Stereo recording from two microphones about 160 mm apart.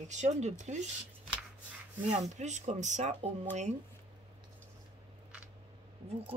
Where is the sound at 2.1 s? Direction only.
45° right (ahead or behind).